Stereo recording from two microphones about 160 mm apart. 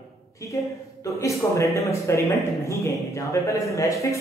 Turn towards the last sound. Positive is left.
turn(degrees=20)  # may be behind; listen again after turning